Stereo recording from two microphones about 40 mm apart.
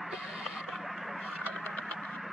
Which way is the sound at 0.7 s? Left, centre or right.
Centre.